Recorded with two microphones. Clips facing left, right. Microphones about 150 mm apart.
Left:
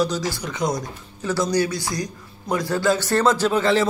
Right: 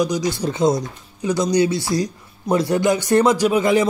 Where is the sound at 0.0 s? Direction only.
15° right (ahead or behind).